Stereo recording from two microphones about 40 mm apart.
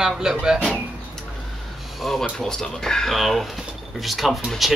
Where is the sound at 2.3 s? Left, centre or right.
Centre.